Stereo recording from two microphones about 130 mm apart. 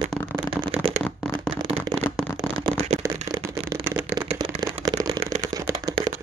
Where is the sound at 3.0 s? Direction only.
25° right (ahead or behind).